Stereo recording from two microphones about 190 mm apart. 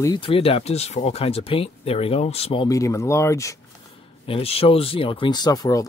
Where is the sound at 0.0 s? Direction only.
25° left (ahead or behind).